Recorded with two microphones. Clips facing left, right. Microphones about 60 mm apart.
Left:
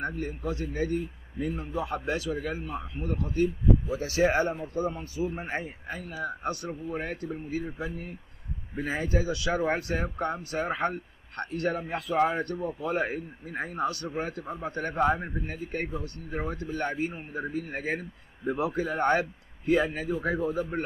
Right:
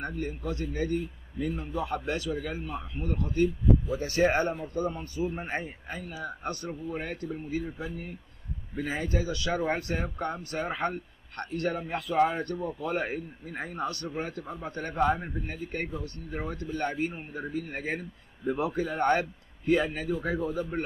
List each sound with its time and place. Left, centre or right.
0.4 s a man's voice: centre
11.7 s a man's voice: centre